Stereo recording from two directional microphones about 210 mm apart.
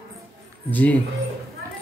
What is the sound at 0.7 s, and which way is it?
Speech, 5° left (ahead or behind).